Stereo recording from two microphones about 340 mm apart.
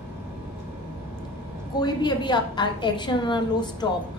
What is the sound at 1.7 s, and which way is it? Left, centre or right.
A woman's voice, centre.